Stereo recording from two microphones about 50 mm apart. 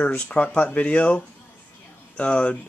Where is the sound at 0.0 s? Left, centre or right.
Left.